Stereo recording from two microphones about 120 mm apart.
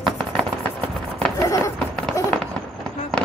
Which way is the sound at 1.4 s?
30° left (ahead or behind).